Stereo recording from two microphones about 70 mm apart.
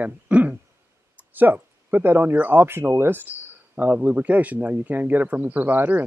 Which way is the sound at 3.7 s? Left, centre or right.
Right.